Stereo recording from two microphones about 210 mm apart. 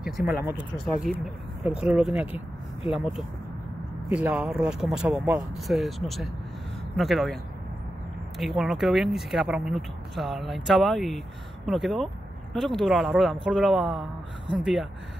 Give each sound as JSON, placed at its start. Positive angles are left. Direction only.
{"t": 0.0, "sound": "speech", "side_deg": -5}
{"t": 8.4, "sound": "speech", "side_deg": 0}